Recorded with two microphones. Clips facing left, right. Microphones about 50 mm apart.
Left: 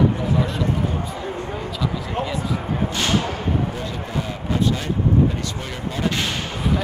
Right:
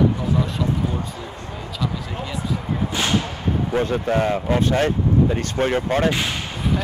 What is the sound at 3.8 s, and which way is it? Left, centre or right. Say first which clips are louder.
Speech: right 8 dB; right.